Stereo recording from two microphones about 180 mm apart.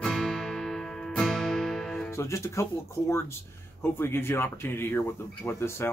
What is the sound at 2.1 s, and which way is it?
Speech, 15° left (ahead or behind).